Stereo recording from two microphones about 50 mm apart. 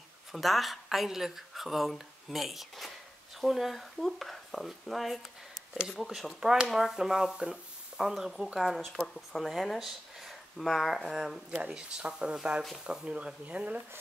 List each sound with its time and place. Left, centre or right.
0.3 s speech: centre
8.5 s speech: centre
11.7 s speech: centre